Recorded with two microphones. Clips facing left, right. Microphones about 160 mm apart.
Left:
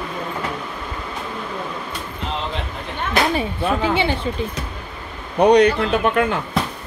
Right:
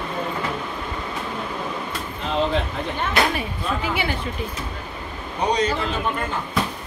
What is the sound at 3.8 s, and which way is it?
Speech, 25° left (ahead or behind).